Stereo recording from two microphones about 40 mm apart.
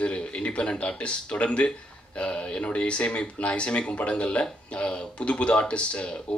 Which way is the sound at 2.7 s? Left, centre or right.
Left.